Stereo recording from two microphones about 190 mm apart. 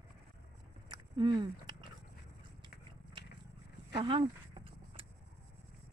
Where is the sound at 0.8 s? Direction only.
20° right (ahead or behind).